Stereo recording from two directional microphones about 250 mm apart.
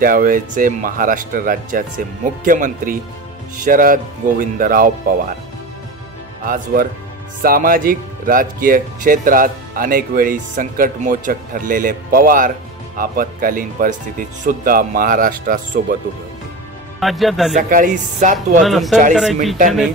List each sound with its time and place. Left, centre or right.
0.0 s speech: right
6.4 s speech: right
17.0 s a man's voice: centre
17.6 s speech: right
18.6 s a man's voice: centre